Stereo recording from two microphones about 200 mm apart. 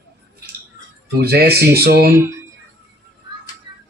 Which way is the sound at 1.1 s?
50° right (ahead or behind).